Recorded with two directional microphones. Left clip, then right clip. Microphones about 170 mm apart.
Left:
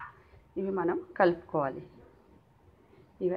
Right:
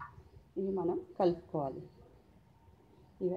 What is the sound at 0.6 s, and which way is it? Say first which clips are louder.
A woman's voice: left 4 dB; 40° left (ahead or behind).